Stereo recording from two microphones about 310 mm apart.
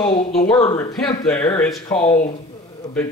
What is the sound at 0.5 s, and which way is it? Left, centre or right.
Speech, centre.